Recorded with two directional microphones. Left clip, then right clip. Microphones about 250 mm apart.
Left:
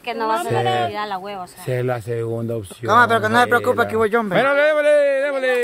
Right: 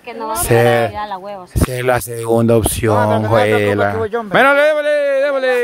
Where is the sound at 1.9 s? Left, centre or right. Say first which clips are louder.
Right 8 dB; right.